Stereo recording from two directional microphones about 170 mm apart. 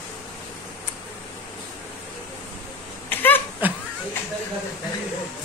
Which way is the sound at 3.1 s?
10° left (ahead or behind).